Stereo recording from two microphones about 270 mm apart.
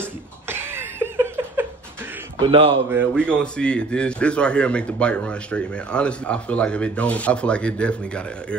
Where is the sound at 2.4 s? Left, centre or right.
Right.